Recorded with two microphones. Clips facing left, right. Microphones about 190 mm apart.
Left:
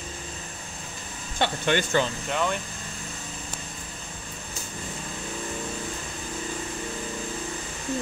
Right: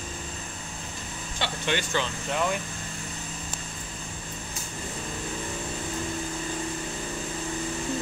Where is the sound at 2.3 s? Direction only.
5° right (ahead or behind).